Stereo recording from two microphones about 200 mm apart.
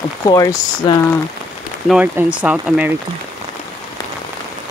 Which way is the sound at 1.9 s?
5° right (ahead or behind).